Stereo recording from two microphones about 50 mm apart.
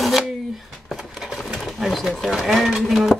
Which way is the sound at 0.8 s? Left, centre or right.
Centre.